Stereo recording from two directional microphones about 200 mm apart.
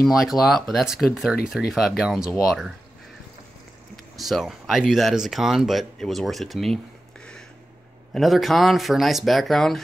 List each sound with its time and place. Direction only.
0.0 s speech: centre (ahead or behind)
4.2 s speech: centre (ahead or behind)